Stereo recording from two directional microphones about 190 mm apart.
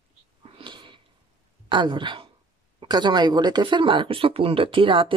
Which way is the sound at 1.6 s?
25° right (ahead or behind).